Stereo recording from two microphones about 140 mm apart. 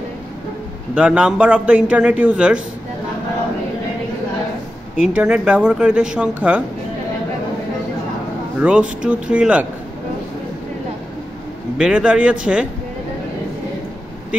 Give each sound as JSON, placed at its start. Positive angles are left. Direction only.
{"t": 0.9, "sound": "a man's voice", "side_deg": -5}
{"t": 5.0, "sound": "a man's voice", "side_deg": -5}
{"t": 8.5, "sound": "a man's voice", "side_deg": -10}
{"t": 11.8, "sound": "a man's voice", "side_deg": -5}